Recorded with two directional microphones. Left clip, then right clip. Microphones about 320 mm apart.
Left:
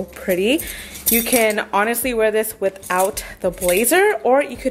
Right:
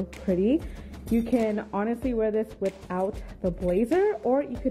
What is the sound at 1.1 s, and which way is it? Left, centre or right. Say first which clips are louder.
Speech: left 9 dB; centre.